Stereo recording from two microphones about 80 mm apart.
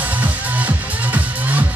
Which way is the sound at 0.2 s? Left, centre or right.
Right.